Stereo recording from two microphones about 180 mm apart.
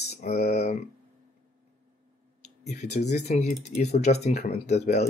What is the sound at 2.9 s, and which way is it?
Speech, 40° left (ahead or behind).